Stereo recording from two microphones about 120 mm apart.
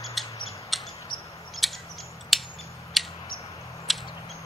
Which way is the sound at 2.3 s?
Centre (ahead or behind).